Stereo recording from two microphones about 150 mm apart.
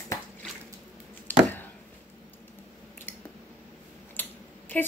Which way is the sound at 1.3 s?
10° left (ahead or behind).